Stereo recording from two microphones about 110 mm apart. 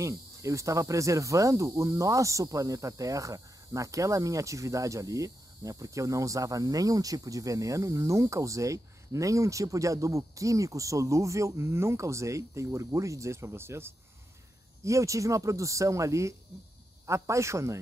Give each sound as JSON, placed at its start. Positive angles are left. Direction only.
{"t": 0.0, "sound": "cricket", "side_deg": -30}